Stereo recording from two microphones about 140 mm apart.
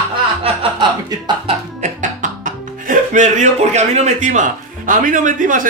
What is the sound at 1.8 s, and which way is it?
Speech, 65° right (ahead or behind).